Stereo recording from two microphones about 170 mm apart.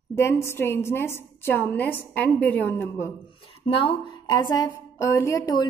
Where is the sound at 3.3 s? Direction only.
30° left (ahead or behind).